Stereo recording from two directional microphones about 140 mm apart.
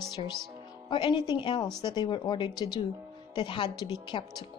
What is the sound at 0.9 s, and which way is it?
A woman's voice, 35° left (ahead or behind).